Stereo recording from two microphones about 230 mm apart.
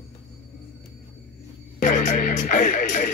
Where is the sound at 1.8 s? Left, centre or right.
Left.